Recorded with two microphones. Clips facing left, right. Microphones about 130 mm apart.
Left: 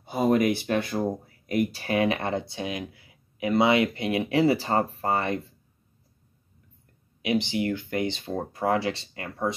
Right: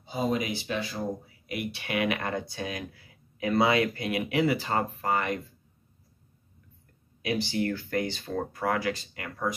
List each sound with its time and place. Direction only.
0.0 s speech: 55° left (ahead or behind); by 5.4 s 30° left (ahead or behind)
7.2 s speech: 20° left (ahead or behind)